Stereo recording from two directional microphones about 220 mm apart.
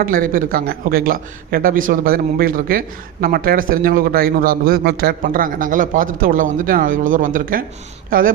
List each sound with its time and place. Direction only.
0.0 s a man's voice: 40° right (ahead or behind)